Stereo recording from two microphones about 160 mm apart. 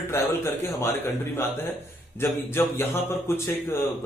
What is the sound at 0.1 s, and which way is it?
Speech, 15° left (ahead or behind).